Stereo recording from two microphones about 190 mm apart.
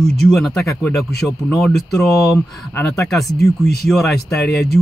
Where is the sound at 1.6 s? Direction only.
Centre (ahead or behind).